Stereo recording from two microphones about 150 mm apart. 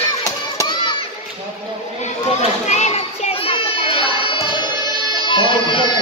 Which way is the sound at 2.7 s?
50° left (ahead or behind).